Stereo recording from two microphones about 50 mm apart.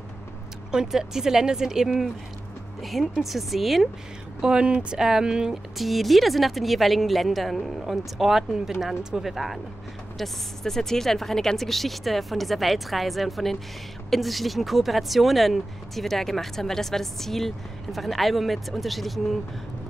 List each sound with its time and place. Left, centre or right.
0.7 s speech: centre
4.4 s speech: centre
5.8 s speech: centre